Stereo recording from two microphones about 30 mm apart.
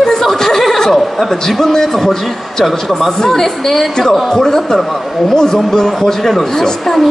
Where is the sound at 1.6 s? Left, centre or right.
Centre.